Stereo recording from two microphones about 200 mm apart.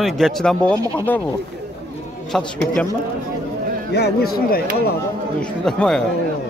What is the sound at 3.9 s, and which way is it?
Speech, 55° left (ahead or behind).